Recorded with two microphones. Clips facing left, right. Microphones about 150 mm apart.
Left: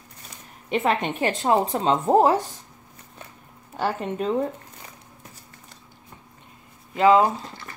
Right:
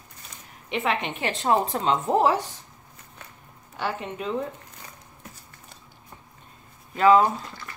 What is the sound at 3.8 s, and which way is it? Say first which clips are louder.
Speech: left 4 dB; 40° left (ahead or behind).